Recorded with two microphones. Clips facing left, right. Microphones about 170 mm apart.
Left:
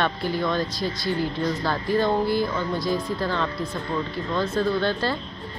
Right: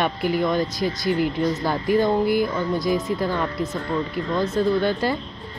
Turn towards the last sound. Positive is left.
turn(degrees=-15)  # may be behind; listen again after turning